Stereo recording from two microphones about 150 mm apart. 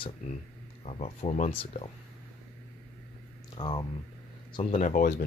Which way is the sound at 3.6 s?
30° left (ahead or behind).